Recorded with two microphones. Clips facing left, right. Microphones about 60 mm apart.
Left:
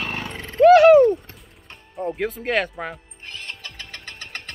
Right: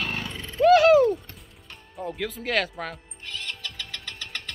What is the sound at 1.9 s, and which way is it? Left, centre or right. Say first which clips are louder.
Speech: left 6 dB; centre.